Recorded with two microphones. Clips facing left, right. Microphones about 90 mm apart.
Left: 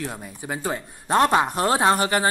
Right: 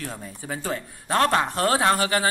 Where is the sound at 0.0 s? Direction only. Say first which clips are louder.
Left 3 dB; 15° left (ahead or behind).